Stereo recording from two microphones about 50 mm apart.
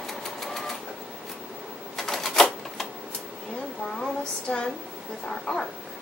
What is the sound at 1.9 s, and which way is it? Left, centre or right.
Typewriter, centre.